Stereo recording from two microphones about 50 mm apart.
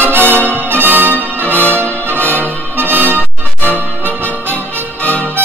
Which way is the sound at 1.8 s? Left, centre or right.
Left.